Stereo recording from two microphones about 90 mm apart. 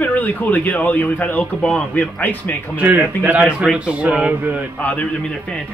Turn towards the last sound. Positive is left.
turn(degrees=20)  # may be behind; listen again after turning